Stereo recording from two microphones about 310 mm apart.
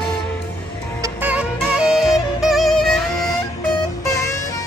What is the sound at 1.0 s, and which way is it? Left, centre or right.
Music, centre.